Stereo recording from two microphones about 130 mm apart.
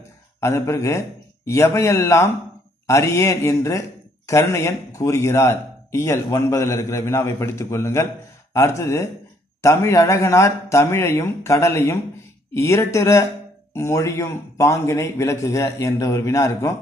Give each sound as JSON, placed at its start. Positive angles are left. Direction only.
{"t": 0.4, "sound": "speech", "side_deg": 20}